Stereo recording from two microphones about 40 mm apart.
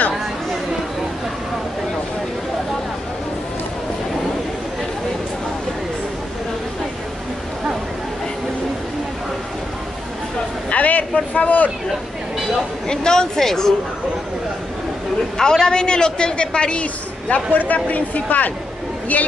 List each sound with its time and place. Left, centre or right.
10.7 s a sound: left
12.8 s a woman's voice: centre
15.3 s a woman's voice: centre; by 17.4 s left
17.5 s speech: left